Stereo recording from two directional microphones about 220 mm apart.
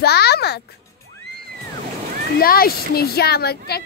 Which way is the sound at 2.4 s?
40° left (ahead or behind).